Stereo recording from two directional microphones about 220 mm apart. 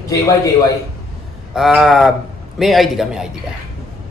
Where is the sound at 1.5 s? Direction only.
Centre (ahead or behind).